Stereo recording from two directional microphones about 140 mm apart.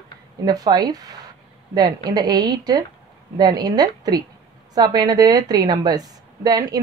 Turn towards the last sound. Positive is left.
turn(degrees=-25)  # may be behind; listen again after turning